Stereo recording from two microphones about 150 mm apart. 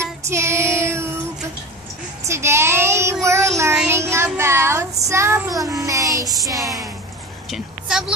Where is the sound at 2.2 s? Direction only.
20° right (ahead or behind).